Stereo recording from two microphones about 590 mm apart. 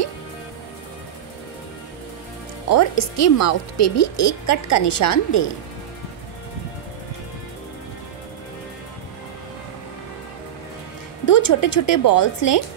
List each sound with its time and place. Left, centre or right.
2.7 s speech: left
11.2 s speech: left